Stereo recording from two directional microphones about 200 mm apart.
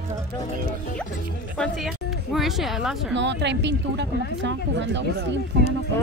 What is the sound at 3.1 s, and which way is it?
Speech, 60° right (ahead or behind).